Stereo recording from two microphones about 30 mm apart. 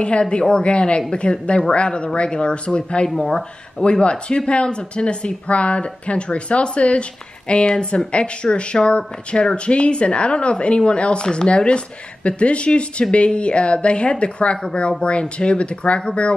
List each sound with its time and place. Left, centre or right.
0.3 s speech: left
3.2 s speech: centre
3.8 s speech: left